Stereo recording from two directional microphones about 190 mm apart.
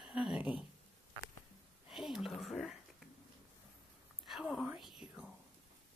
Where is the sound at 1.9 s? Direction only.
Centre (ahead or behind).